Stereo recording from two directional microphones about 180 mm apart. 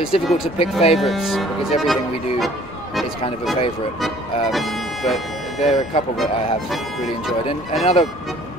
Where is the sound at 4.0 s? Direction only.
Centre (ahead or behind).